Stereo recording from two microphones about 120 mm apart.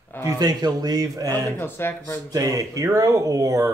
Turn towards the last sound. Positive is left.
turn(degrees=-30)  # may be behind; listen again after turning